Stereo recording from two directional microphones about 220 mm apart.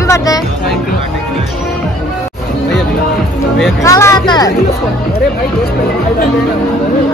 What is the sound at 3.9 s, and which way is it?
Hubbub, 15° left (ahead or behind).